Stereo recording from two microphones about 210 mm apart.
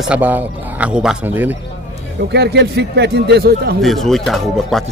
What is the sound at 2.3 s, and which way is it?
Speech, 50° right (ahead or behind).